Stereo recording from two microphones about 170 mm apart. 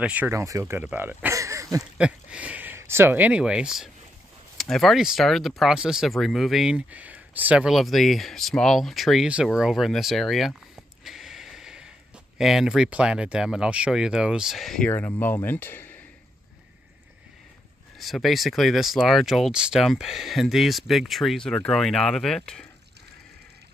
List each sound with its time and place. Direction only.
0.0 s speech: 10° right (ahead or behind)
2.0 s speech: 5° right (ahead or behind); by 16.0 s 10° left (ahead or behind)
17.9 s speech: centre (ahead or behind)